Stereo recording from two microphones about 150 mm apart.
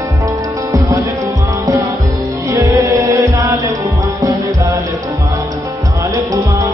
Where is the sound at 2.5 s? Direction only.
20° right (ahead or behind).